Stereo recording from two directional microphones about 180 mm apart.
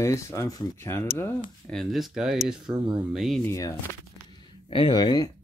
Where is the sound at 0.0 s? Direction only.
15° left (ahead or behind).